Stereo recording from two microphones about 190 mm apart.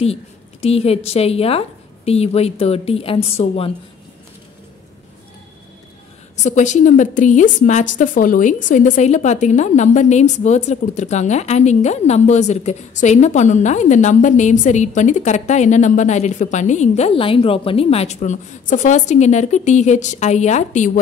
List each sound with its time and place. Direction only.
0.0 s a woman's voice: 30° left (ahead or behind)
6.3 s a woman's voice: 40° left (ahead or behind)